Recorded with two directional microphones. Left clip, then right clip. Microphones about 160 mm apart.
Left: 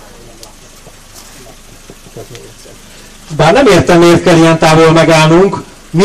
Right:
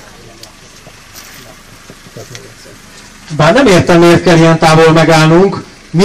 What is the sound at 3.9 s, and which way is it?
A man's voice, 45° left (ahead or behind).